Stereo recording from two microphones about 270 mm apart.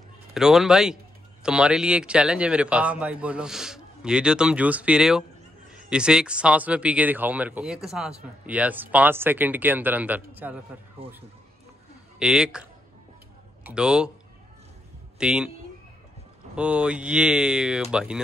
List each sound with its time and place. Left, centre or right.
0.3 s speech: centre
11.0 s speech: right
12.2 s speech: centre
13.7 s speech: centre
15.1 s speech: centre
16.5 s speech: centre